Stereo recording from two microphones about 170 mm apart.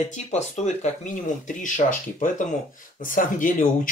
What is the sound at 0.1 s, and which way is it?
Speech, 45° left (ahead or behind).